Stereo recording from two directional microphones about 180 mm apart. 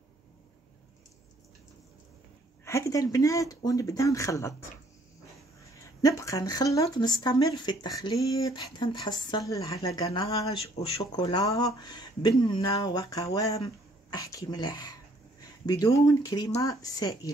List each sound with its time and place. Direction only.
2.6 s speech: 15° left (ahead or behind)
6.0 s speech: 20° left (ahead or behind)
10.5 s speech: 30° left (ahead or behind)